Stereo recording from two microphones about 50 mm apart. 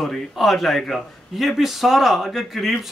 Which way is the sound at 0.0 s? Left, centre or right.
Centre.